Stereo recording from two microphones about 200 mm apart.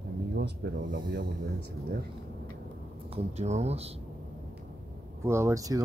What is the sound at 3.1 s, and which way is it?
Speech, 35° right (ahead or behind).